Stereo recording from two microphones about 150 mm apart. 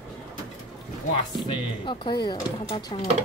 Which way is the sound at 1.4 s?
30° left (ahead or behind).